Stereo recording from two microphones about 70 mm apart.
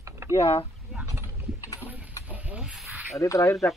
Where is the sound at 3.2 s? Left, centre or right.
Left.